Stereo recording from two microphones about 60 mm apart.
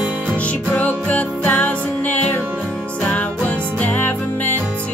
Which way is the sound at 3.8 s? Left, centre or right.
Left.